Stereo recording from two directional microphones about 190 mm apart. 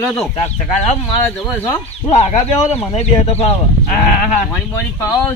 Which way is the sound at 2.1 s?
35° left (ahead or behind).